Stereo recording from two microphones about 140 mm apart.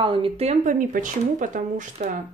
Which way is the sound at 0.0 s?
40° right (ahead or behind).